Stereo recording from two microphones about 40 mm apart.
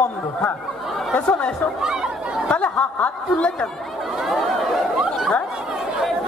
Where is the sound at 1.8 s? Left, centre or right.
Centre.